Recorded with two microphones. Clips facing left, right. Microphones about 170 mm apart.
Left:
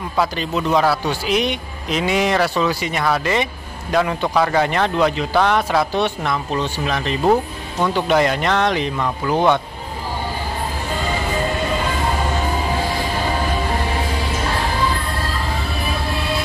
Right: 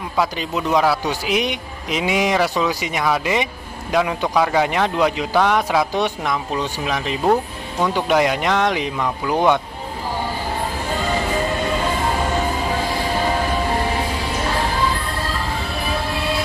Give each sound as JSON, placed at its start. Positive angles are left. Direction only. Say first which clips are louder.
{"t": 0.4, "sound": "a man's voice", "louder": "left 1 dB", "side_deg": -10}